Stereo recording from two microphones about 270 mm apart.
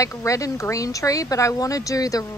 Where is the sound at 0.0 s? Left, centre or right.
Centre.